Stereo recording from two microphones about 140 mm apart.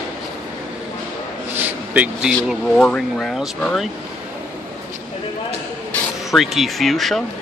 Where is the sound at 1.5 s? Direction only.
10° right (ahead or behind).